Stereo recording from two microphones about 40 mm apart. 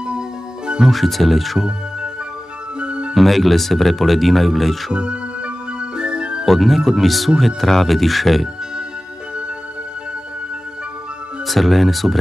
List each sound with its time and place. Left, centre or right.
0.8 s speech: centre
2.8 s music: right
3.2 s speech: centre
4.9 s music: right
6.4 s speech: centre
11.4 s speech: centre